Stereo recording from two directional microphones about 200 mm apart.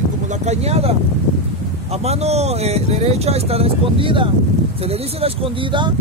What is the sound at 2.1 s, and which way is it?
Speech, 30° right (ahead or behind).